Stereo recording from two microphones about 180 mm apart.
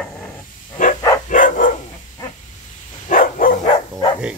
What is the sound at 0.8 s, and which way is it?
Dog, 45° left (ahead or behind).